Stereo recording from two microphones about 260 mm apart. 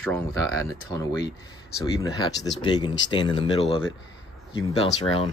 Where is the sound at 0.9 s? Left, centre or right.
Centre.